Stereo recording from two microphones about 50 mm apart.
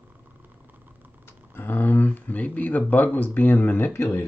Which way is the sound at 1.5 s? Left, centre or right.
Left.